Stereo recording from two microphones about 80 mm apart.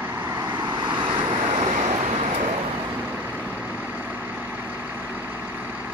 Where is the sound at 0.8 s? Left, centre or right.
Right.